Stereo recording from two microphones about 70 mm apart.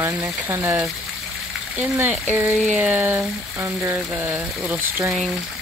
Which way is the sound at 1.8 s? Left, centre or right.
Right.